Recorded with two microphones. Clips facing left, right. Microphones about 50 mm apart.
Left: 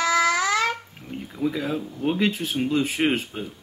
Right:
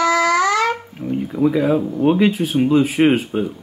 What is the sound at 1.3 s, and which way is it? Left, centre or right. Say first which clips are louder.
Speech: right 9 dB; right.